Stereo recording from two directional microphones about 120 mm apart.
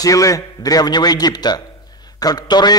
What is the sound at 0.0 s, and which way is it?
A man's voice, 30° left (ahead or behind).